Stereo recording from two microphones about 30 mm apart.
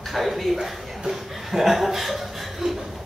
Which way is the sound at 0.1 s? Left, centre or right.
Centre.